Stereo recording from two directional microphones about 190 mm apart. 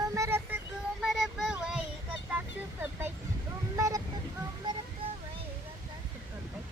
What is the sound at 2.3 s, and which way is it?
Vehicle, 10° right (ahead or behind).